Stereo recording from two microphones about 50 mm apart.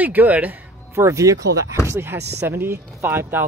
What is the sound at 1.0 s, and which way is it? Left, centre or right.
Speech, right.